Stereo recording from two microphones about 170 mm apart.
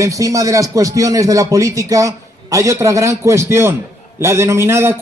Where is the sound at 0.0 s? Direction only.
20° right (ahead or behind).